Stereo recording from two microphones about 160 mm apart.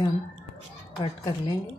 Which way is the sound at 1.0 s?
25° left (ahead or behind).